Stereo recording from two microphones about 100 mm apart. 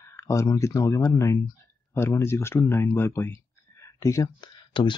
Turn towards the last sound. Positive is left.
turn(degrees=55)  # may be behind; listen again after turning